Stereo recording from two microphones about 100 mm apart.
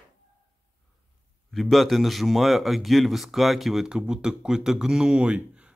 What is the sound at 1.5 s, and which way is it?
Speech, centre (ahead or behind).